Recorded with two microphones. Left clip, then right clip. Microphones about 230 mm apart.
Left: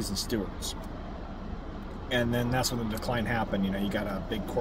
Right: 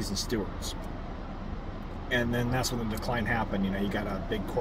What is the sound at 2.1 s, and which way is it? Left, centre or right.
Speech, centre.